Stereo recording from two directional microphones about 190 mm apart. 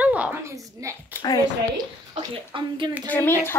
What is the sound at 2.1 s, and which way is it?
Speech, 25° right (ahead or behind).